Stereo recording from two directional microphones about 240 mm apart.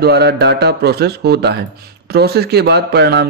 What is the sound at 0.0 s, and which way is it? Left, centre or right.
A man's voice, right.